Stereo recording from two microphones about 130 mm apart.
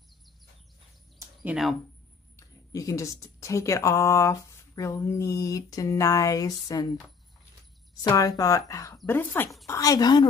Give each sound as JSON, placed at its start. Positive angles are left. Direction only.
{"t": 2.3, "sound": "speech", "side_deg": 25}
{"t": 8.0, "sound": "speech", "side_deg": 30}
{"t": 9.7, "sound": "speech", "side_deg": 25}